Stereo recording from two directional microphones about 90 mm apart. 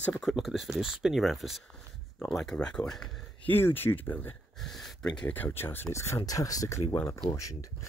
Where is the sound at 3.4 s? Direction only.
25° left (ahead or behind).